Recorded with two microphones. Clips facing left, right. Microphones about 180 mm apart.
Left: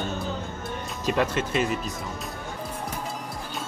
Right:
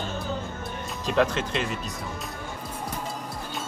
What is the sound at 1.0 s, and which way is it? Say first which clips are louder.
Speech: right 1 dB; 5° left (ahead or behind).